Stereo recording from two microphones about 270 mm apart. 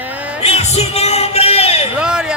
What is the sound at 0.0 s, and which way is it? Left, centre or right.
Music, centre.